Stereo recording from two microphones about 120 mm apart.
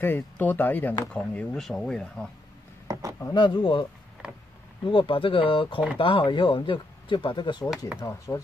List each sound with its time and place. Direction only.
0.0 s speech: 15° left (ahead or behind)
2.9 s a sound: 30° right (ahead or behind)
3.2 s speech: 35° left (ahead or behind)
4.8 s speech: 45° left (ahead or behind)
8.0 s speech: 25° left (ahead or behind)